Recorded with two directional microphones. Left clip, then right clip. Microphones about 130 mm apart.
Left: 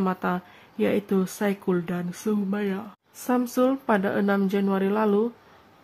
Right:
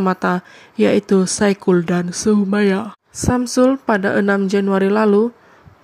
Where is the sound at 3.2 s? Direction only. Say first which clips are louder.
Right 8 dB; 35° right (ahead or behind).